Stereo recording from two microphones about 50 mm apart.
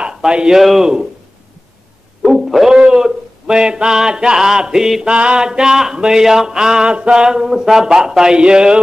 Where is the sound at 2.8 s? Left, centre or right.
Centre.